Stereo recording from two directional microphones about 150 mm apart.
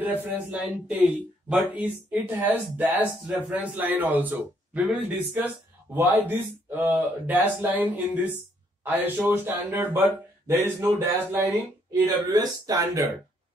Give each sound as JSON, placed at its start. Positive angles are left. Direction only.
{"t": 0.0, "sound": "speech", "side_deg": -10}